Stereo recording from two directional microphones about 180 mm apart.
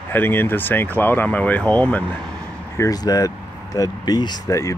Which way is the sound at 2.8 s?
20° left (ahead or behind).